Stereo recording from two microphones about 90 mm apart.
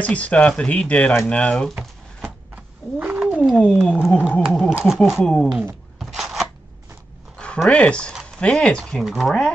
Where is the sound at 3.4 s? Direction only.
Centre (ahead or behind).